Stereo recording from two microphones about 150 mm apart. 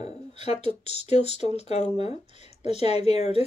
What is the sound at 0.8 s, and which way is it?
Speech, 45° left (ahead or behind).